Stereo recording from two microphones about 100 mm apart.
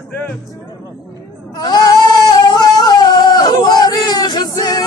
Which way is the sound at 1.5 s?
40° left (ahead or behind).